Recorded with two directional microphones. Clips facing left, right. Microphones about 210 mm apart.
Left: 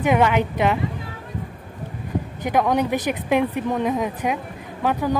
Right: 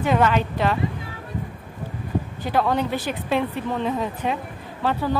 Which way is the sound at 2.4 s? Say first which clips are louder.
Left 3 dB; 15° left (ahead or behind).